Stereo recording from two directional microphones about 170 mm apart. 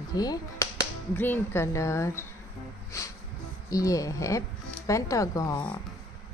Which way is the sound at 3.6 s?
20° left (ahead or behind).